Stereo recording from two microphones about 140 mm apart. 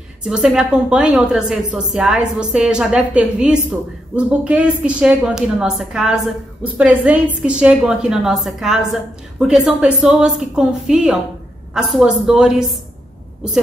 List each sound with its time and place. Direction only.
0.2 s a woman's voice: 5° right (ahead or behind)